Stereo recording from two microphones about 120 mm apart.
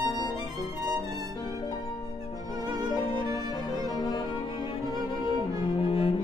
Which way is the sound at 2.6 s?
35° right (ahead or behind).